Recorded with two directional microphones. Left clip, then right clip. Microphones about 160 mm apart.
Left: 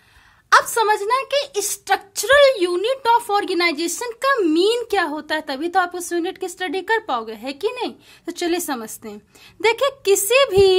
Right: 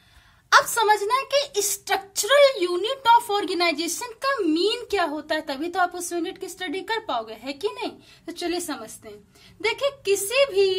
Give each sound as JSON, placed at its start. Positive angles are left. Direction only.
{"t": 0.5, "sound": "a woman's voice", "side_deg": 30}
{"t": 8.3, "sound": "speech", "side_deg": 50}